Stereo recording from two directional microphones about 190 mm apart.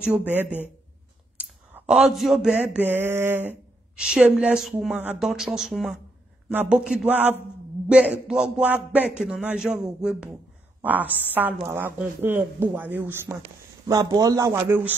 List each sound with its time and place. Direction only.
0.0 s speech: 5° right (ahead or behind)
1.7 s a man's voice: 5° right (ahead or behind)